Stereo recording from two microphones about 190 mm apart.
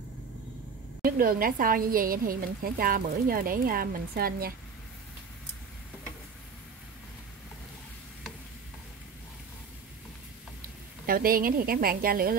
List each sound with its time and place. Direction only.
1.0 s a woman's voice: 50° right (ahead or behind)
11.1 s a woman's voice: 50° right (ahead or behind)